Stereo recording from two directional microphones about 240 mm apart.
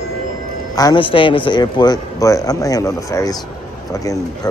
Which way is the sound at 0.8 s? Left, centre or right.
Centre.